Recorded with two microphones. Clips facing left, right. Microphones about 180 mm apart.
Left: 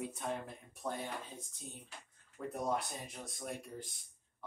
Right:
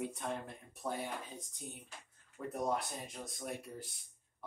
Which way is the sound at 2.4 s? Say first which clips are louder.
Even; centre (ahead or behind).